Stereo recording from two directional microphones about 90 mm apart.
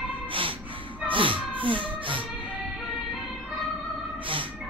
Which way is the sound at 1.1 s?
75° right (ahead or behind).